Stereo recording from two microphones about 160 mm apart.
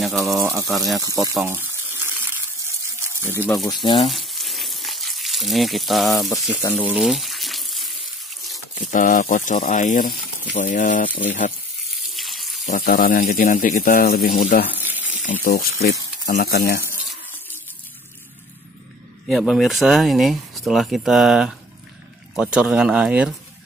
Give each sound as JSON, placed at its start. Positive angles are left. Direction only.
{"t": 0.0, "sound": "speech", "side_deg": 0}
{"t": 0.4, "sound": "speech", "side_deg": -20}
{"t": 0.7, "sound": "speech", "side_deg": 0}
{"t": 0.9, "sound": "water", "side_deg": -20}
{"t": 3.8, "sound": "speech", "side_deg": 30}
{"t": 4.1, "sound": "frying", "side_deg": 0}
{"t": 6.5, "sound": "speech", "side_deg": 10}
{"t": 7.0, "sound": "water", "side_deg": 0}
{"t": 8.7, "sound": "speech", "side_deg": 55}
{"t": 12.1, "sound": "water", "side_deg": 0}
{"t": 12.6, "sound": "speech", "side_deg": 60}
{"t": 14.8, "sound": "water", "side_deg": -10}
{"t": 15.4, "sound": "speech", "side_deg": 65}
{"t": 19.2, "sound": "speech", "side_deg": 0}